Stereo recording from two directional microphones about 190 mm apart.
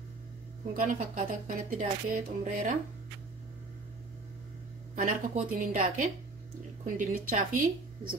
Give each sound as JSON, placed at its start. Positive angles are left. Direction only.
{"t": 0.7, "sound": "speech", "side_deg": -45}
{"t": 4.9, "sound": "speech", "side_deg": -45}